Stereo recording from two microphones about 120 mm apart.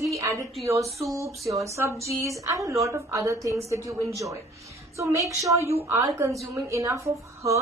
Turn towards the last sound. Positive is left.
turn(degrees=-25)  # may be behind; listen again after turning